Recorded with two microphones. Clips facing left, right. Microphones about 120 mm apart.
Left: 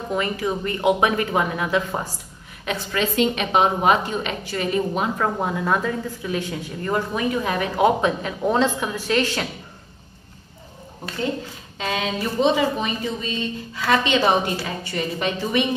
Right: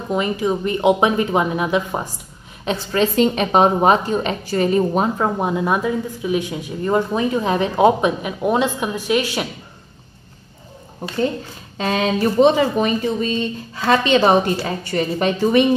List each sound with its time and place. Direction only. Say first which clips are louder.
0.1 s speech: right 5 dB; 20° right (ahead or behind)
2.6 s a woman's voice: right 5 dB; 30° right (ahead or behind)
5.2 s speech: right 3 dB; 20° right (ahead or behind)
11.8 s a woman's voice: right 7 dB; 40° right (ahead or behind)